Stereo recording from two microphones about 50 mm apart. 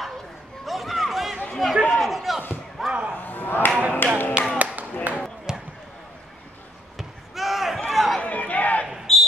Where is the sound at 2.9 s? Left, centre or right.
Right.